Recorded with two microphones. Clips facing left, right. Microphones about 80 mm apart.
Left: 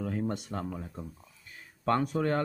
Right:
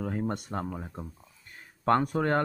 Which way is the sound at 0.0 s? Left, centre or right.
Right.